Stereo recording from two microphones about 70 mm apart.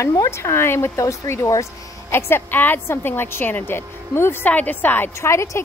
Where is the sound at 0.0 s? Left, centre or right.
Left.